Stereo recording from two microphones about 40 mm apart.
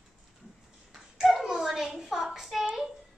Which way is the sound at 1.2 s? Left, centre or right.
Centre.